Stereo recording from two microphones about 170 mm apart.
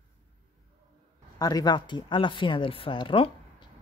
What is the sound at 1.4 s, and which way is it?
Speech, 25° left (ahead or behind).